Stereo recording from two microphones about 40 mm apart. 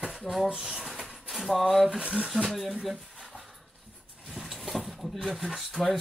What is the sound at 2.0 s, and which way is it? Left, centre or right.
Speech, right.